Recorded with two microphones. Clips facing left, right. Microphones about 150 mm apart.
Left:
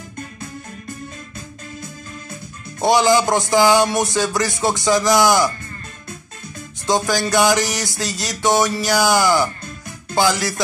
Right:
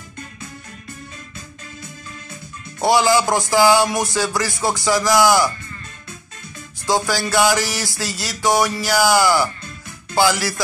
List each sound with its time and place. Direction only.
2.8 s music: 20° left (ahead or behind)
6.9 s music: 20° left (ahead or behind)